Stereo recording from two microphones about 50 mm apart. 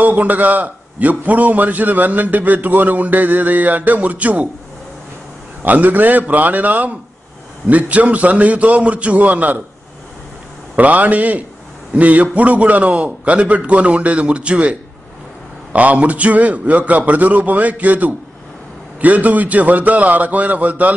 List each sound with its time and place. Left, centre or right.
0.0 s a man's voice: right
5.6 s a man's voice: right
10.8 s a man's voice: right